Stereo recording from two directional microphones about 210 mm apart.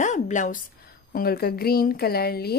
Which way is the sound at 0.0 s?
35° left (ahead or behind).